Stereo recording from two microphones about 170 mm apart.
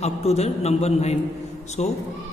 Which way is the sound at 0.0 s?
40° left (ahead or behind).